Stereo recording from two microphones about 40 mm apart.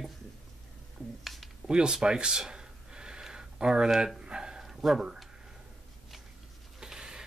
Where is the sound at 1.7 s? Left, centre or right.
Right.